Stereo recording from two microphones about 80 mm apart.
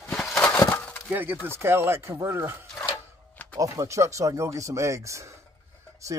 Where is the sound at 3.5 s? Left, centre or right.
Right.